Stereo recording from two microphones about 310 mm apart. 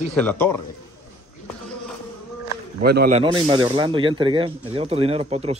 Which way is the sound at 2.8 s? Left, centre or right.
Right.